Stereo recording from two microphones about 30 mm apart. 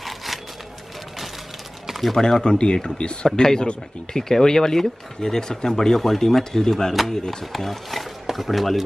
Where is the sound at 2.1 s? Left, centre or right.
Left.